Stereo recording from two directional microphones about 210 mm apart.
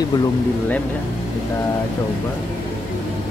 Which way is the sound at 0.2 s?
5° left (ahead or behind).